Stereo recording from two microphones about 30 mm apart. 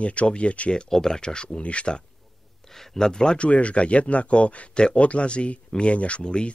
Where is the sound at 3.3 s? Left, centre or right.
Left.